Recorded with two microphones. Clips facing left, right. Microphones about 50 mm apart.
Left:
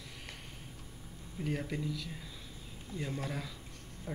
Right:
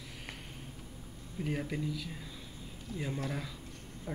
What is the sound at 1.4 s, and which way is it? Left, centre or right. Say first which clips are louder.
Speech: right 1 dB; centre.